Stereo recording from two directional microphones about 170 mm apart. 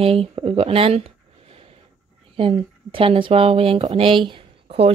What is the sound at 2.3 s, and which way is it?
Speech, 35° right (ahead or behind).